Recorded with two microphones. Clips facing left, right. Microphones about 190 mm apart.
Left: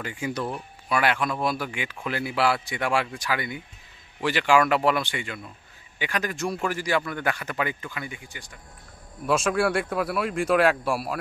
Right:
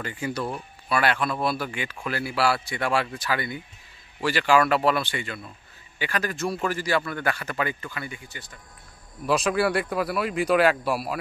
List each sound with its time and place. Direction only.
0.0 s speech: 15° left (ahead or behind)
9.2 s speech: centre (ahead or behind)